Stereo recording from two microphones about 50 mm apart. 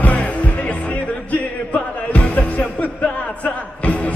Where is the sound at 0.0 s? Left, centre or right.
Left.